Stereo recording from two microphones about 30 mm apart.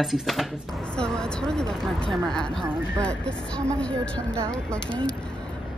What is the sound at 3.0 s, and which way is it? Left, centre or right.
Speech, left.